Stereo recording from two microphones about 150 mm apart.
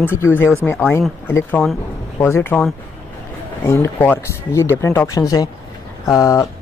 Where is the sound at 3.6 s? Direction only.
15° left (ahead or behind).